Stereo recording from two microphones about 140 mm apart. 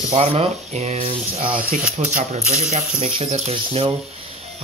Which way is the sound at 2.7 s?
50° right (ahead or behind).